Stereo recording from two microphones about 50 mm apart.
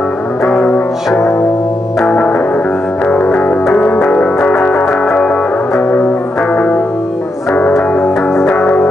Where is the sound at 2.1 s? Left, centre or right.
Left.